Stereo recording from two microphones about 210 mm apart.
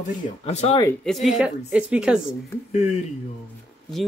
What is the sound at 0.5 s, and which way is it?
Speech, 30° left (ahead or behind).